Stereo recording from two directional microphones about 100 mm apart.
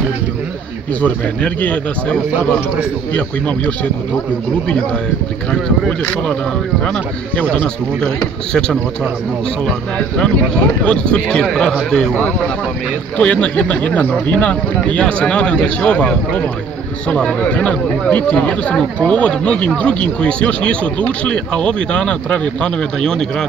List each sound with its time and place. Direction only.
1.0 s speech: 15° left (ahead or behind)
5.5 s speech: 10° left (ahead or behind)
9.7 s speech: 10° left (ahead or behind)